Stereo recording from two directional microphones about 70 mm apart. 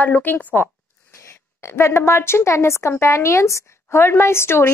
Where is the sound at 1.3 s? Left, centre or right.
Left.